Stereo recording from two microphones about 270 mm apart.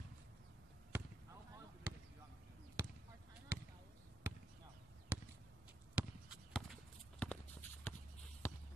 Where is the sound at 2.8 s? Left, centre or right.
Centre.